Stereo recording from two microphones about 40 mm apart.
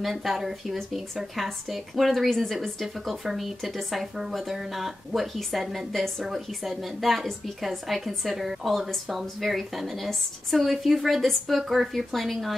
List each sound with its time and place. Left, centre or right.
0.0 s speech: centre
10.0 s a woman's voice: centre
10.7 s speech: centre